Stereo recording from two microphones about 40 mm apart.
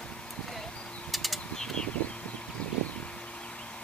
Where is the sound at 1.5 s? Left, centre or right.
Centre.